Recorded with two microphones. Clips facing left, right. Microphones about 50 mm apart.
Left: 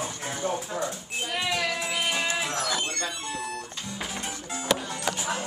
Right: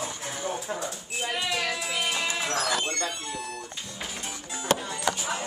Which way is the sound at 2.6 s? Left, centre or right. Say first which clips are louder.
Right 1 dB; centre.